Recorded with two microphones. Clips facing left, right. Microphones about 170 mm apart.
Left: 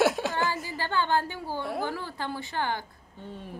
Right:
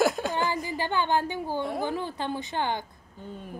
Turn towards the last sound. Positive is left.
turn(degrees=0)  # may be behind; listen again after turning